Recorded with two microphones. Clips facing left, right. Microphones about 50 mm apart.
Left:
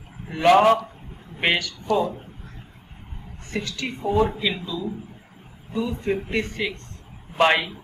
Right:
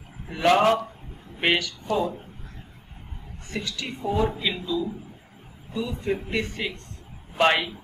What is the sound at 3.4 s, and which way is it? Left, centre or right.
Speech, left.